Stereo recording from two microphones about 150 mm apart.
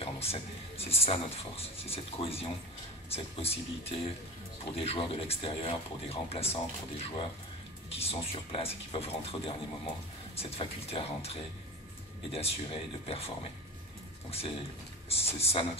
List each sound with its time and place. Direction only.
0.0 s speech: 40° left (ahead or behind)
15.0 s speech: 40° left (ahead or behind)